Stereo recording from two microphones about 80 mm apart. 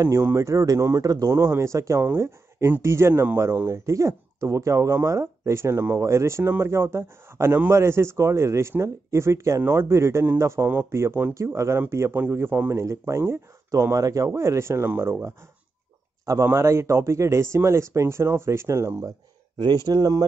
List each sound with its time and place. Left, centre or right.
0.2 s speech: right
1.0 s speech: right
1.3 s a man's voice: right
16.4 s speech: right
19.9 s speech: right